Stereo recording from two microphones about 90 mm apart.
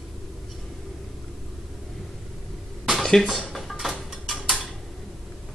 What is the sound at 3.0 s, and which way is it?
Dishes, 5° left (ahead or behind).